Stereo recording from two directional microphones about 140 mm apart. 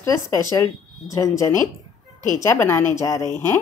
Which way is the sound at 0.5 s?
20° left (ahead or behind).